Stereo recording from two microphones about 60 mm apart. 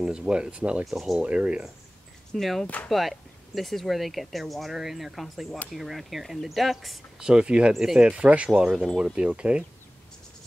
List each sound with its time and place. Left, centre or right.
0.0 s speech: centre
0.8 s speech: centre
1.2 s speech: centre
2.3 s speech: centre
2.6 s speech: left
2.9 s speech: centre
7.2 s speech: centre
8.2 s speech: right
8.6 s speech: centre
9.0 s speech: centre